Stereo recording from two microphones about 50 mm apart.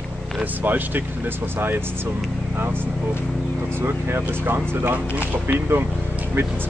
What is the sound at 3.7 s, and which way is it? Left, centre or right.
Speech, right.